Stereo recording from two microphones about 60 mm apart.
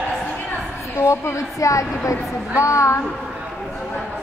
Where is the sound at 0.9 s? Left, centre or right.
Left.